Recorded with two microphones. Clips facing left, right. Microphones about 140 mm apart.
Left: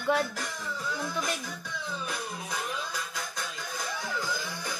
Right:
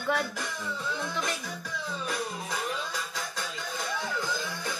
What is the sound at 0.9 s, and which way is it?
Music, 5° left (ahead or behind).